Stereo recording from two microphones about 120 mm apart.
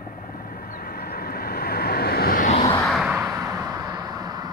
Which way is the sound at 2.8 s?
Centre (ahead or behind).